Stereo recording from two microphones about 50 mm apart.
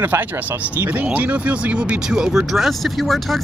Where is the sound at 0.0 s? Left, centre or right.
Right; by 2.4 s centre.